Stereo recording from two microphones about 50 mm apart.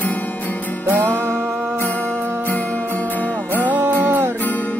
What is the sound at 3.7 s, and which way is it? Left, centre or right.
Music, right.